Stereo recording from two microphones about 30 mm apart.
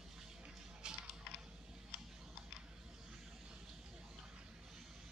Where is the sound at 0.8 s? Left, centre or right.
Right.